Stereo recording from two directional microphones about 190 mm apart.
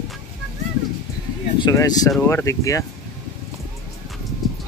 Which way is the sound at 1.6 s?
20° left (ahead or behind).